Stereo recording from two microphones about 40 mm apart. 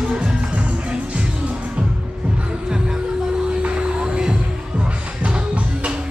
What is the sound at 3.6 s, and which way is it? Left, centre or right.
Music, right.